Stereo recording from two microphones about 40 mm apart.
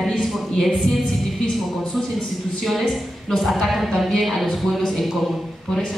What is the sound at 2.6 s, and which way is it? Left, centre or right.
A woman's voice, centre.